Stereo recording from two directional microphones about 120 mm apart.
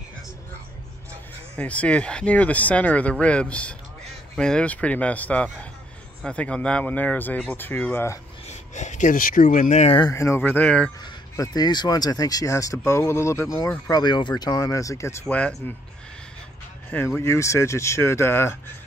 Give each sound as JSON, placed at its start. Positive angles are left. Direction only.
{"t": 1.6, "sound": "speech", "side_deg": 10}
{"t": 8.5, "sound": "speech", "side_deg": 80}
{"t": 10.1, "sound": "speech", "side_deg": 20}
{"t": 11.3, "sound": "speech", "side_deg": 30}
{"t": 15.2, "sound": "speech", "side_deg": 10}
{"t": 16.9, "sound": "speech", "side_deg": 15}